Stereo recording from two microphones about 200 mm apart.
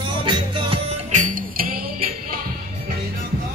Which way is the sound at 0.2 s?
25° right (ahead or behind).